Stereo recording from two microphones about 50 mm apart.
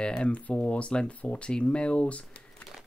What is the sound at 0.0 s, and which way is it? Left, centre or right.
Speech, left.